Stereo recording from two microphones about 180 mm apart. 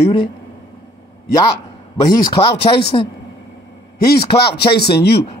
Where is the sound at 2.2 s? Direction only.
30° left (ahead or behind).